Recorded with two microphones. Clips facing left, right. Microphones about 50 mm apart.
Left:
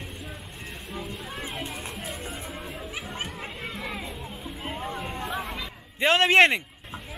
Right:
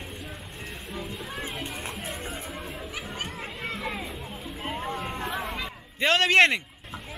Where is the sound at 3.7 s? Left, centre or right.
Centre.